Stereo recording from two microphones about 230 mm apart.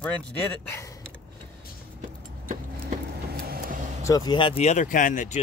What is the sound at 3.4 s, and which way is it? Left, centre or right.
Vehicle, right.